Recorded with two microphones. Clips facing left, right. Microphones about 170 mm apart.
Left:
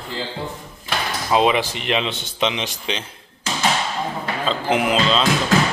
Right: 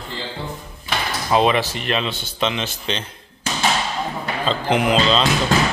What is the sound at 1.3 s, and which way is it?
Speech, 10° left (ahead or behind).